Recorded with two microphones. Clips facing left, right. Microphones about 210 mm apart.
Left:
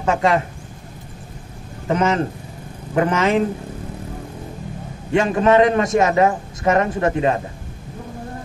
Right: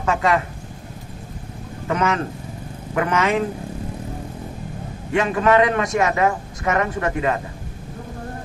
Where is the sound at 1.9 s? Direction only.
25° left (ahead or behind).